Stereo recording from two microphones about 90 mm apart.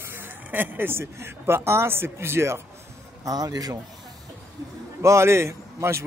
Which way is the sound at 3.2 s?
45° right (ahead or behind).